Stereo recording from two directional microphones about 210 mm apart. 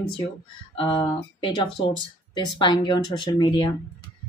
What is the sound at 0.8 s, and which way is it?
Speech, 25° left (ahead or behind).